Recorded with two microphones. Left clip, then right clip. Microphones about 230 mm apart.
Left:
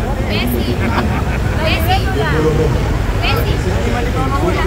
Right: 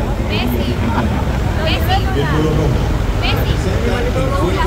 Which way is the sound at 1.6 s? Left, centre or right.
Left.